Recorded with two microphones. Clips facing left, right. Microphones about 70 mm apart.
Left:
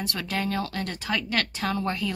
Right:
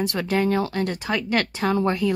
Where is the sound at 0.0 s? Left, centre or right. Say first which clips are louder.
Right 7 dB; right.